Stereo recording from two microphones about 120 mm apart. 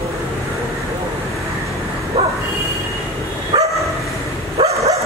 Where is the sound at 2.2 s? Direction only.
55° right (ahead or behind).